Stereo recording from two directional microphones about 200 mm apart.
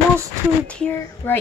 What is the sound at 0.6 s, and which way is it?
Speech, 5° left (ahead or behind).